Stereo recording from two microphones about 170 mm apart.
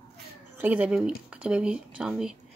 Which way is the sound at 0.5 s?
10° right (ahead or behind).